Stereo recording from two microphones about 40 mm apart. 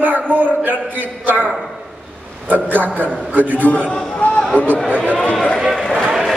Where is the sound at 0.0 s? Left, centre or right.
Right.